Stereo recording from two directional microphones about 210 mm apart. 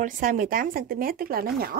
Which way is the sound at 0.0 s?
40° right (ahead or behind).